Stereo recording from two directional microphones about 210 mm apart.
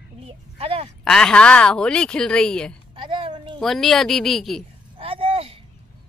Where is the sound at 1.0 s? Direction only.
5° left (ahead or behind).